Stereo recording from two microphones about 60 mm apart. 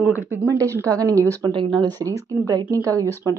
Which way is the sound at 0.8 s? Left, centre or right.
Right.